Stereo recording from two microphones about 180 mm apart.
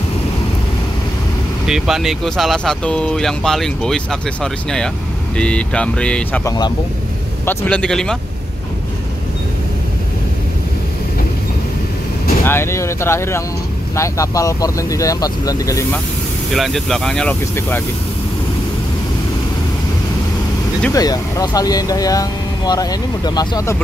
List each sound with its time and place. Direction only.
1.7 s speech: centre (ahead or behind)
6.4 s speech: 20° left (ahead or behind)
7.4 s speech: 5° left (ahead or behind)
12.4 s speech: 15° left (ahead or behind)
16.5 s speech: centre (ahead or behind)
20.9 s speech: 20° left (ahead or behind)